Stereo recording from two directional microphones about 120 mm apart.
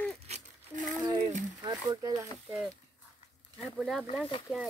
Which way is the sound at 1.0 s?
35° right (ahead or behind).